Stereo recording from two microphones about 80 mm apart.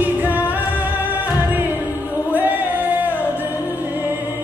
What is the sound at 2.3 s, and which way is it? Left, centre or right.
Music, right.